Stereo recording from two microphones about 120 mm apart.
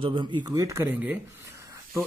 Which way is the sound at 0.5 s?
25° right (ahead or behind).